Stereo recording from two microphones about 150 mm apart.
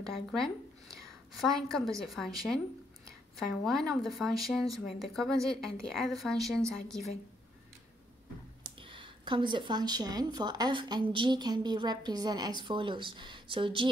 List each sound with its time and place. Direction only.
0.0 s a woman's voice: centre (ahead or behind)
8.8 s speech: 35° right (ahead or behind)